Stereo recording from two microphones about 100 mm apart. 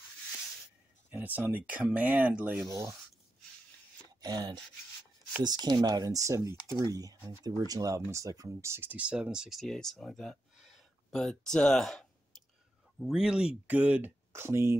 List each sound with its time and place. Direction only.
1.1 s speech: 20° right (ahead or behind)
4.2 s a sound: 40° right (ahead or behind)
5.4 s speech: 45° right (ahead or behind); by 14.8 s 25° right (ahead or behind)